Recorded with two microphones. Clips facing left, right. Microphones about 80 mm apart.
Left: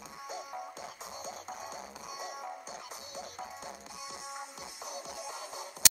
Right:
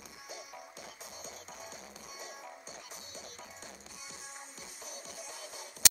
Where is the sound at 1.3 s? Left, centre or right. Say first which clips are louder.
Left 7 dB; left.